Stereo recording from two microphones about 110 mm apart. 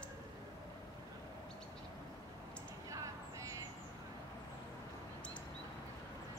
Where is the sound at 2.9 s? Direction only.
30° right (ahead or behind).